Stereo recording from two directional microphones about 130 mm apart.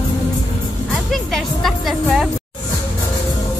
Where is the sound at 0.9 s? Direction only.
Centre (ahead or behind).